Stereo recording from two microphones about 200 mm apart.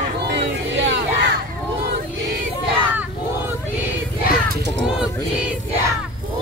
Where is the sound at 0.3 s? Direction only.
60° right (ahead or behind).